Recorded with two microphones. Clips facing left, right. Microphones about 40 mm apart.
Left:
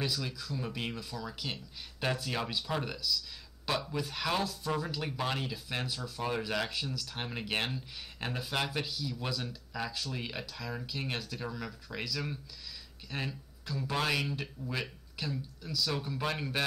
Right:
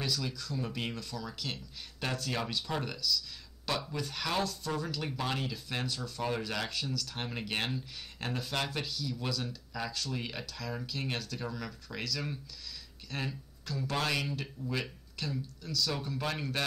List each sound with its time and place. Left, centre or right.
0.0 s speech: centre